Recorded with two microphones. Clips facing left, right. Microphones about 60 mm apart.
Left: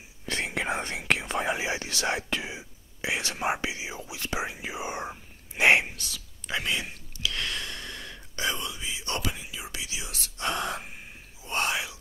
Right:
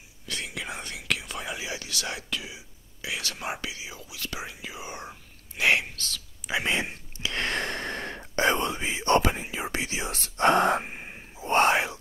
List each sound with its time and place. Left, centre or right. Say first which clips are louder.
0.3 s whispering: left 6 dB; left
5.9 s whispering: right 3 dB; centre
6.6 s whispering: right 3 dB; right